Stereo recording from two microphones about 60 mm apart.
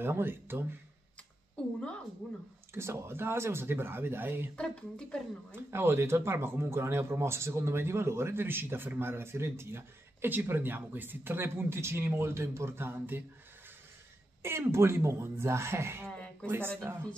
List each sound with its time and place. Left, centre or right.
0.0 s speech: right
2.2 s a sound: left
2.7 s speech: right
4.6 s speech: centre
5.5 s speech: right
14.4 s speech: right
16.1 s a sound: centre
16.4 s speech: right